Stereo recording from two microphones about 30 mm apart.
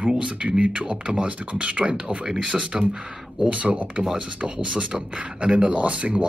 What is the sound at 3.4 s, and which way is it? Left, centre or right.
Speech, right.